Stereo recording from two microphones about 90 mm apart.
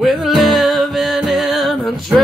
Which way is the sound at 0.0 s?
Centre (ahead or behind).